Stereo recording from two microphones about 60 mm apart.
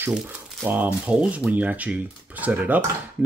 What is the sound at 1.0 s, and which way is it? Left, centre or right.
Speech, centre.